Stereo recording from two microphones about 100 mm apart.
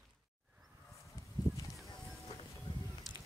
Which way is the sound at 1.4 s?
45° left (ahead or behind).